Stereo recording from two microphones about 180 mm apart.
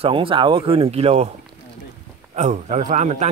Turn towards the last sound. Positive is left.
turn(degrees=-40)  # may be behind; listen again after turning